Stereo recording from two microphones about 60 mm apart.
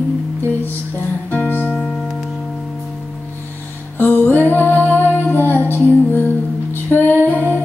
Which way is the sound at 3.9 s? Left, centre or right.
Left.